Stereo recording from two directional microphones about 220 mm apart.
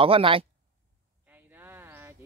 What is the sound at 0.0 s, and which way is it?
Speech, 25° right (ahead or behind).